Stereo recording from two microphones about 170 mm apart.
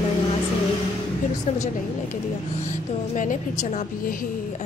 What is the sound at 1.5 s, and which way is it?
Speech, 45° left (ahead or behind).